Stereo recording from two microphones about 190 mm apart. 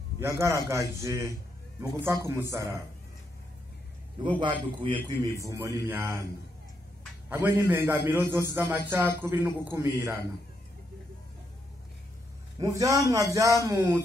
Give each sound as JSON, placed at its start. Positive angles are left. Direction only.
{"t": 0.2, "sound": "a man's voice", "side_deg": -15}
{"t": 4.8, "sound": "a man's voice", "side_deg": -25}
{"t": 7.2, "sound": "a man's voice", "side_deg": -10}
{"t": 12.5, "sound": "a man's voice", "side_deg": -20}